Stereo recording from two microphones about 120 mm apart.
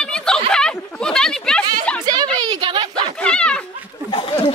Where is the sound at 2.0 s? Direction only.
35° right (ahead or behind).